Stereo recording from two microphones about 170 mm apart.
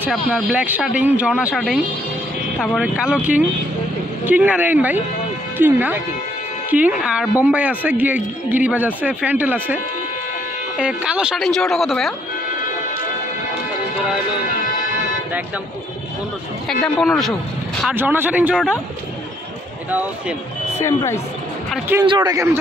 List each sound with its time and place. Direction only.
0.0 s speech: 10° right (ahead or behind)
10.8 s speech: 5° right (ahead or behind)
16.8 s speech: centre (ahead or behind)
17.9 s speech: 10° right (ahead or behind)
20.8 s speech: 15° left (ahead or behind)
22.0 s speech: 25° right (ahead or behind)